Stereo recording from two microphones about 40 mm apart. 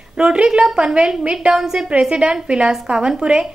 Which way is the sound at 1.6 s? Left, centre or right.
Centre.